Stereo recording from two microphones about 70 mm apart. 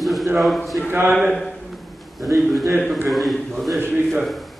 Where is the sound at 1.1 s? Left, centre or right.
Centre.